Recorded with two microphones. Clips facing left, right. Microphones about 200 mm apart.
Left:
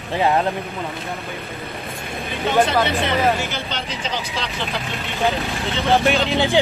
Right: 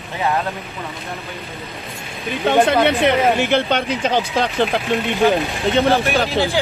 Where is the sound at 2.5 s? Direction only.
55° right (ahead or behind).